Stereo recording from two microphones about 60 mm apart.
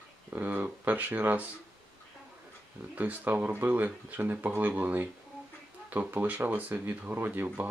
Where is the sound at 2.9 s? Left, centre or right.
Right.